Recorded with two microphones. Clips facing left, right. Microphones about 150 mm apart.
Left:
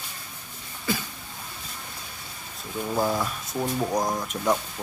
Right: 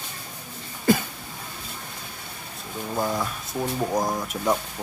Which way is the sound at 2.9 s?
5° left (ahead or behind).